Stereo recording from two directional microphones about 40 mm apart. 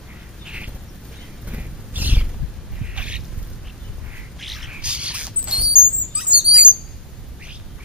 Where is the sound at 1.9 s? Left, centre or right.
Right.